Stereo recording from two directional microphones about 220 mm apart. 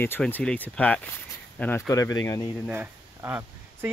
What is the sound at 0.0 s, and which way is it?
Speech, 10° left (ahead or behind).